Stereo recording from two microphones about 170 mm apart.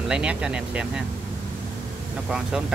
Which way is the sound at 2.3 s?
5° right (ahead or behind).